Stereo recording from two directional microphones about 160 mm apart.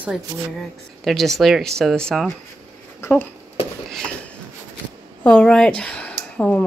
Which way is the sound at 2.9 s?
15° left (ahead or behind).